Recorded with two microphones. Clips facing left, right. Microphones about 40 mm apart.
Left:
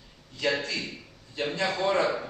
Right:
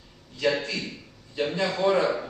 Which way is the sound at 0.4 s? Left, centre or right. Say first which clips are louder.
Right 2 dB; centre.